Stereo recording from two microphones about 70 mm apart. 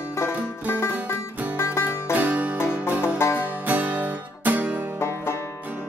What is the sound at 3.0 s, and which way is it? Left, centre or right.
Music, left.